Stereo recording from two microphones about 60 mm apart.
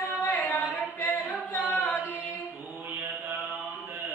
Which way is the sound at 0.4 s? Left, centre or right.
Left.